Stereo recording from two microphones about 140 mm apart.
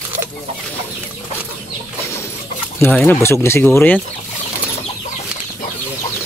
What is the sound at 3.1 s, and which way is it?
Speech, 15° left (ahead or behind).